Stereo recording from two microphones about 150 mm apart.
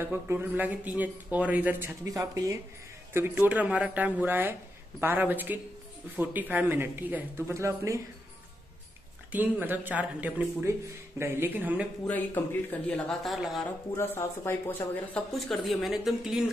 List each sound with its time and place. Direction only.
0.0 s speech: 15° right (ahead or behind)
9.3 s speech: 10° right (ahead or behind)
12.8 s speech: 5° left (ahead or behind)
13.9 s speech: 15° left (ahead or behind)
15.1 s speech: centre (ahead or behind)